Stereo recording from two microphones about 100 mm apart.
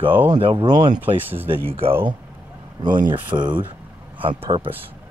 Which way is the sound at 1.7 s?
75° right (ahead or behind).